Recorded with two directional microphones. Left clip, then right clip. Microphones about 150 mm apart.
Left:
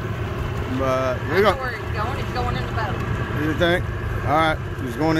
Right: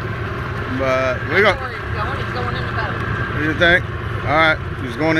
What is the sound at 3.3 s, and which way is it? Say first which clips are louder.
Speech: right 6 dB; 30° left (ahead or behind).